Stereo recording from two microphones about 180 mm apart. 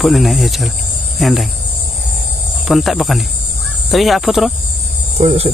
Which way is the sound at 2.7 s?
Centre (ahead or behind).